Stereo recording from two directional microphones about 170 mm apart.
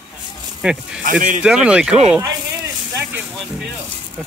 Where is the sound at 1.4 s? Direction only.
5° right (ahead or behind).